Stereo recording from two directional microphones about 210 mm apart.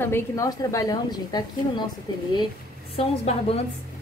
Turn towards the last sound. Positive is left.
turn(degrees=25)  # may be behind; listen again after turning